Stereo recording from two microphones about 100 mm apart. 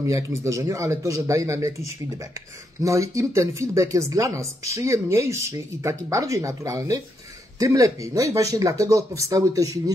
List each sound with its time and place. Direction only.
0.0 s speech: 30° right (ahead or behind)
2.8 s speech: 30° right (ahead or behind)